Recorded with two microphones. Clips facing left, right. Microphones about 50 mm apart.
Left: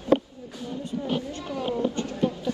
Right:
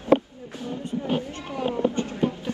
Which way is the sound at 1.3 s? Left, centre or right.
Right.